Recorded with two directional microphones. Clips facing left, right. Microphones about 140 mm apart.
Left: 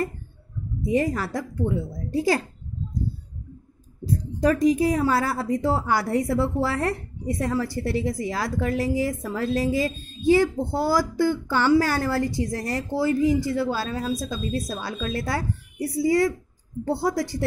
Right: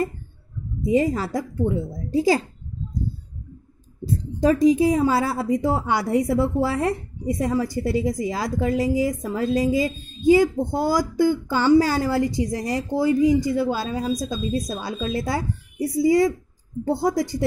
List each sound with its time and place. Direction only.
0.8 s a woman's voice: 20° right (ahead or behind)
4.2 s a woman's voice: 25° right (ahead or behind)